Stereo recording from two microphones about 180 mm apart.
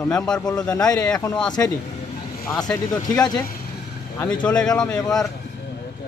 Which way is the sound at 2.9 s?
20° left (ahead or behind).